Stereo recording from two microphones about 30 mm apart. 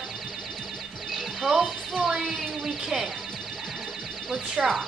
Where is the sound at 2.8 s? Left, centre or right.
Centre.